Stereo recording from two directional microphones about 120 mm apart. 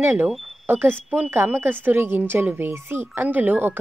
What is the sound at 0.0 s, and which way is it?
A woman's voice, 20° right (ahead or behind).